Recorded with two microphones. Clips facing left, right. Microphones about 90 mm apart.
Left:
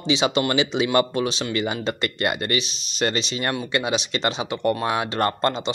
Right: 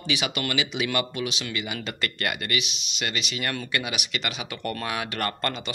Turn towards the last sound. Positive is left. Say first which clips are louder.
# left 7 dB
turn(degrees=25)  # may be behind; listen again after turning